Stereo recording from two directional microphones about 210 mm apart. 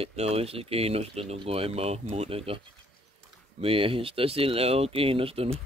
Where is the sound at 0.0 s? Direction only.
30° right (ahead or behind).